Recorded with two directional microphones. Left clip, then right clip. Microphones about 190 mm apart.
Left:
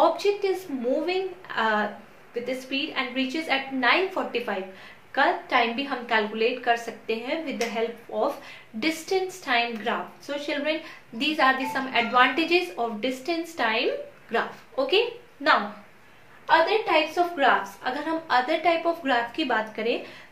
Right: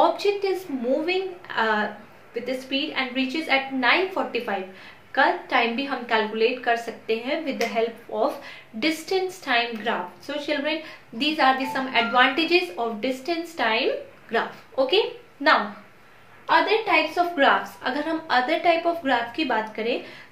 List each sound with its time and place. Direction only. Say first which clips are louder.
0.2 s a woman's voice: right 1 dB; centre (ahead or behind)
15.4 s speech: right 2 dB; 15° right (ahead or behind)
17.1 s a woman's voice: right 2 dB; 20° right (ahead or behind); by 20.0 s 5° left (ahead or behind)